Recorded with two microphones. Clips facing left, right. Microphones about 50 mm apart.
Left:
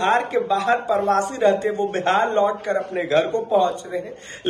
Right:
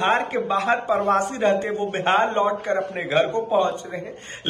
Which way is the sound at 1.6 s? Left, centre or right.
Right.